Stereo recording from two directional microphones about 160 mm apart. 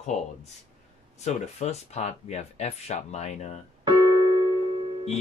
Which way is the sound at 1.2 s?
45° left (ahead or behind).